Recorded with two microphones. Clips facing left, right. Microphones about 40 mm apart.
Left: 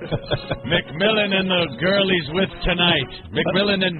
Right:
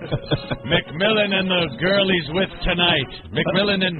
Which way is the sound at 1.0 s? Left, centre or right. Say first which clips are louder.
Left 1 dB; centre.